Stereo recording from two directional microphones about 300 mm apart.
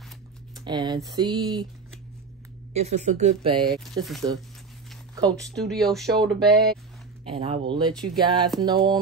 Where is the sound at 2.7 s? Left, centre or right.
Right.